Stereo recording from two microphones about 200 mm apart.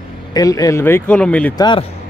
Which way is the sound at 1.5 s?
20° left (ahead or behind).